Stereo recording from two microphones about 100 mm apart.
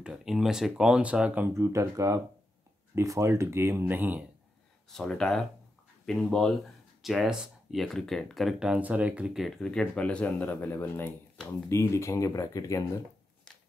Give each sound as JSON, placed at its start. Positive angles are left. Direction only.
{"t": 0.0, "sound": "speech", "side_deg": -5}
{"t": 1.5, "sound": "speech", "side_deg": -30}
{"t": 4.8, "sound": "speech", "side_deg": 5}
{"t": 9.6, "sound": "speech", "side_deg": 10}